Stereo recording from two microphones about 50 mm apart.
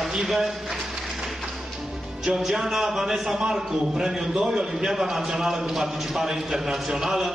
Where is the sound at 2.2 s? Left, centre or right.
Centre.